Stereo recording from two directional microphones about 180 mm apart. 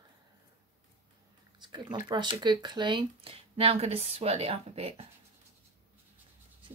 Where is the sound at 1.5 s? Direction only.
25° right (ahead or behind).